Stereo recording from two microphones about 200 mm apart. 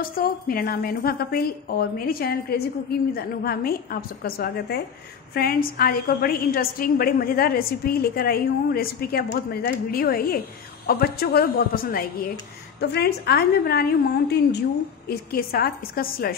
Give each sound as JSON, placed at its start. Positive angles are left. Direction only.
{"t": 0.2, "sound": "a woman's voice", "side_deg": 50}